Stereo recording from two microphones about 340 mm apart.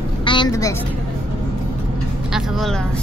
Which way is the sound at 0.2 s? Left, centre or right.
Centre.